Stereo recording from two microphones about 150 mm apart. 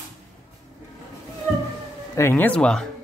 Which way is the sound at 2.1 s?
15° left (ahead or behind).